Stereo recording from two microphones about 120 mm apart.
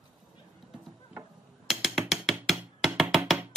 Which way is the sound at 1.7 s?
Centre (ahead or behind).